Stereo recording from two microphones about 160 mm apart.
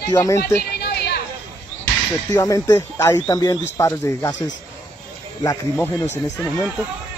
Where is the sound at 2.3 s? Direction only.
20° left (ahead or behind).